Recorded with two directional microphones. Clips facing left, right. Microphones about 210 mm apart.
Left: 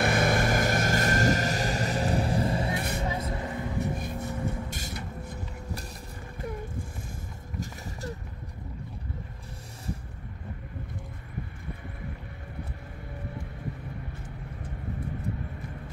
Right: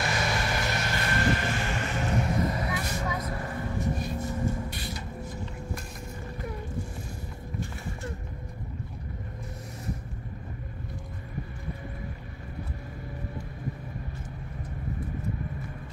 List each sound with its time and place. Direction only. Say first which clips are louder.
0.0 s vehicle: left 5 dB; 55° left (ahead or behind); by 3.4 s 25° left (ahead or behind)
3.4 s vehicle: left 1 dB; 15° left (ahead or behind)
4.0 s music: right 2 dB; 50° left (ahead or behind)